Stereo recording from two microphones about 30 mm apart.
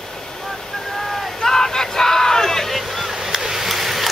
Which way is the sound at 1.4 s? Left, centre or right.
Centre.